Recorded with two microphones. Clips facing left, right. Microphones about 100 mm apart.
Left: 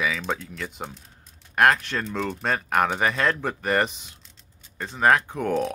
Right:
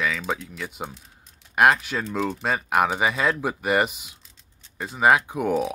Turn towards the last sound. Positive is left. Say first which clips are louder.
# right 1 dB
turn(degrees=-10)  # may be behind; listen again after turning